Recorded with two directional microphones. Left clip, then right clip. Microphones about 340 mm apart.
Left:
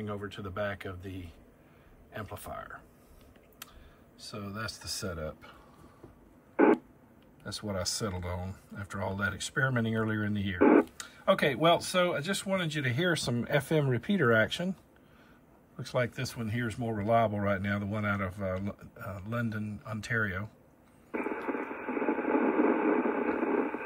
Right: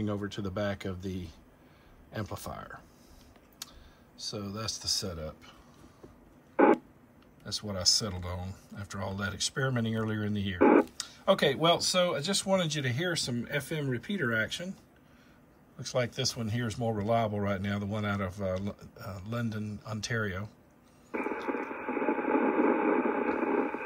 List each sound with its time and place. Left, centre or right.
0.0 s speech: centre
2.1 s speech: centre
4.2 s speech: centre
6.5 s a sound: centre
7.4 s speech: centre
15.8 s speech: centre
21.1 s radio: centre